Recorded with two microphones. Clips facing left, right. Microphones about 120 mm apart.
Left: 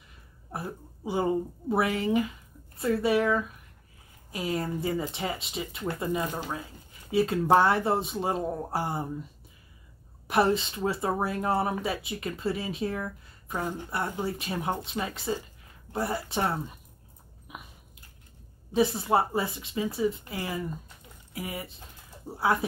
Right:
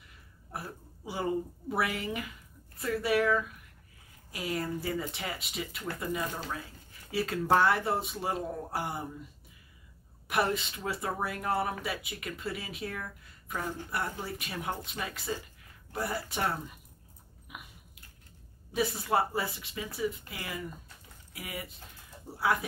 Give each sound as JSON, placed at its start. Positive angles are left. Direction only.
{"t": 0.5, "sound": "speech", "side_deg": 25}
{"t": 10.2, "sound": "speech", "side_deg": 30}
{"t": 17.5, "sound": "biting", "side_deg": 30}
{"t": 18.7, "sound": "speech", "side_deg": 25}